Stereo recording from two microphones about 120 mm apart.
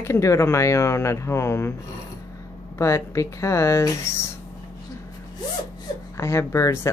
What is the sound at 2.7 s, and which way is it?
Speech, 25° left (ahead or behind).